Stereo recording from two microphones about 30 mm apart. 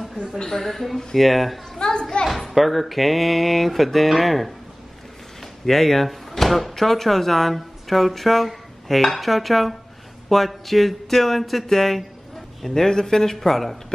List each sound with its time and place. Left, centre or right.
0.4 s speech: centre
0.9 s speech: centre
1.8 s children playing: left
2.2 s speech: centre